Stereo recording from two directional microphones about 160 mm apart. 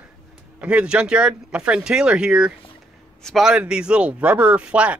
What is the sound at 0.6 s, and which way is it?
Speech, 5° right (ahead or behind).